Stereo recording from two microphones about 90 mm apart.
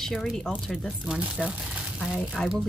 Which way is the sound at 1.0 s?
10° right (ahead or behind).